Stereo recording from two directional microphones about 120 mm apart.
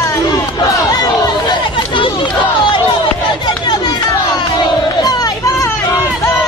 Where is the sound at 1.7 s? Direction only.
45° left (ahead or behind).